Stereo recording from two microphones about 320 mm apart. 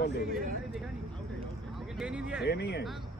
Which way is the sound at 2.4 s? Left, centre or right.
Left.